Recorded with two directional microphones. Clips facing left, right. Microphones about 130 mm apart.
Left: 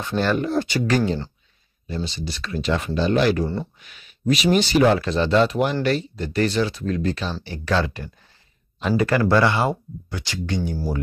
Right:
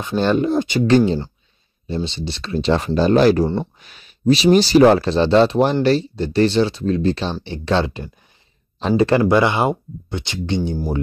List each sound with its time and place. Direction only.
0.0 s speech: 20° right (ahead or behind)